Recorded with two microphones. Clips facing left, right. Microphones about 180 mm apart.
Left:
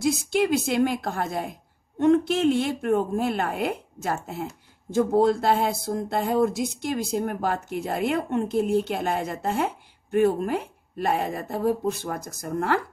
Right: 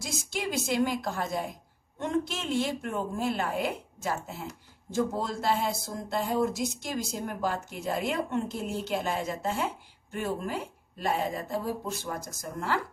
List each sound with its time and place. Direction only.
0.0 s speech: 60° left (ahead or behind)